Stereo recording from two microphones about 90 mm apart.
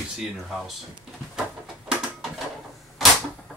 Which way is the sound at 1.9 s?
5° right (ahead or behind).